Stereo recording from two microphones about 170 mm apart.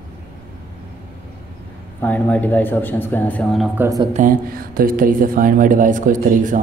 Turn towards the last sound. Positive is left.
turn(degrees=-50)  # may be behind; listen again after turning